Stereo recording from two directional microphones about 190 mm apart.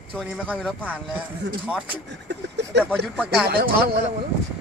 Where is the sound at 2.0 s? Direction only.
65° right (ahead or behind).